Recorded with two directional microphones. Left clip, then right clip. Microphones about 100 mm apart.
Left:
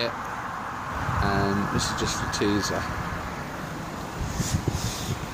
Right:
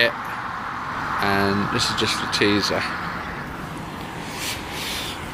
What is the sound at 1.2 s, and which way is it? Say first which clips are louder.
Speech: right 5 dB; centre (ahead or behind).